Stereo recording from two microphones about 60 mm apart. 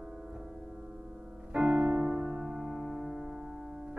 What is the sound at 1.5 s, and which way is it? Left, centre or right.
Music, centre.